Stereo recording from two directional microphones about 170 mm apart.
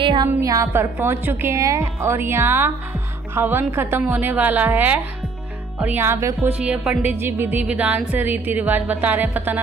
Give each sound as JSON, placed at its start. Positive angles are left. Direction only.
{"t": 0.0, "sound": "music", "side_deg": -30}
{"t": 0.3, "sound": "a woman's voice", "side_deg": -20}
{"t": 6.6, "sound": "music", "side_deg": -5}
{"t": 8.1, "sound": "a woman's voice", "side_deg": -10}